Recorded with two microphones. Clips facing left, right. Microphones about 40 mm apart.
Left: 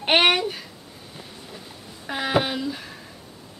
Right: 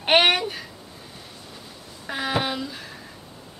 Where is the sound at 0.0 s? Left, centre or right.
Centre.